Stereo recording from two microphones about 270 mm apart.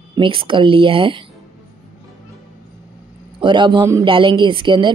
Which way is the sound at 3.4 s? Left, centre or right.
Centre.